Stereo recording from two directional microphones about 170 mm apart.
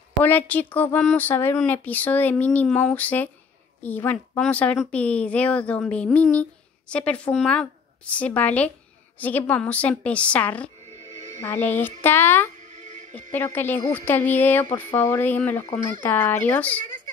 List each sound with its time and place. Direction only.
0.2 s a woman's voice: 10° left (ahead or behind)
10.9 s music: 40° right (ahead or behind)
11.4 s a woman's voice: 10° left (ahead or behind)
12.5 s music: 45° right (ahead or behind)
13.3 s a woman's voice: 10° left (ahead or behind)